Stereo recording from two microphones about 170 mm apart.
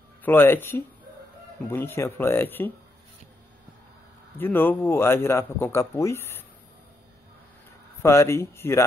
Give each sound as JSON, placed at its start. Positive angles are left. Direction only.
{"t": 0.2, "sound": "a man's voice", "side_deg": 10}
{"t": 4.4, "sound": "a man's voice", "side_deg": 10}
{"t": 8.0, "sound": "a man's voice", "side_deg": 15}